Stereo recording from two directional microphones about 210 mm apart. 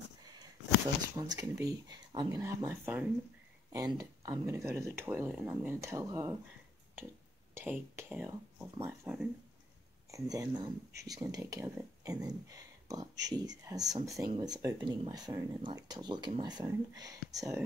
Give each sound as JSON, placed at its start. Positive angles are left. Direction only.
{"t": 1.1, "sound": "speech", "side_deg": -20}
{"t": 7.5, "sound": "speech", "side_deg": -10}